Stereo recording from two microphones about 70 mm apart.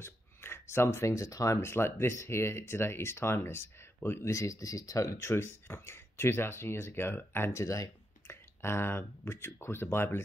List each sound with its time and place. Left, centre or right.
0.0 s speech: left
4.3 s speech: left
5.3 s speech: left
7.5 s speech: left
8.3 s speech: left